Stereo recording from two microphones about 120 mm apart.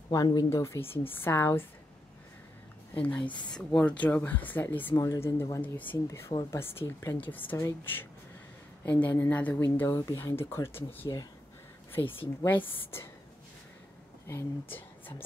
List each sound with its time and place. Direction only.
0.1 s speech: 35° left (ahead or behind)
2.9 s speech: 10° left (ahead or behind)
4.9 s speech: 30° left (ahead or behind)
12.4 s speech: 20° left (ahead or behind)
14.2 s speech: 20° left (ahead or behind)